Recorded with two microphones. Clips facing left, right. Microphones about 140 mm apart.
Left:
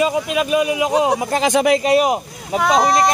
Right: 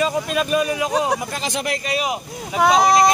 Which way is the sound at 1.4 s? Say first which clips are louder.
Left 10 dB; 90° left.